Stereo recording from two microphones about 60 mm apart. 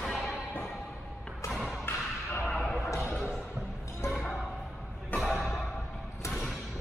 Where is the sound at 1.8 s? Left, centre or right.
Left.